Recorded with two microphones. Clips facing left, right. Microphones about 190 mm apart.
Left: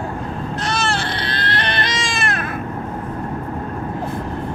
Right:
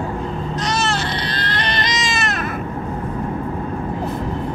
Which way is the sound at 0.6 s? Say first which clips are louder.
Even; 55° left (ahead or behind).